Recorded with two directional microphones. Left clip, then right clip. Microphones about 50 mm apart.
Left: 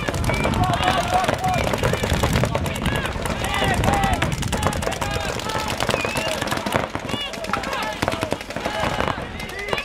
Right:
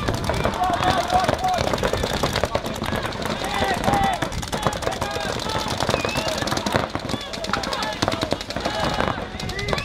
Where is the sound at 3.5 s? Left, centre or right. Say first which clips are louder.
Even; left.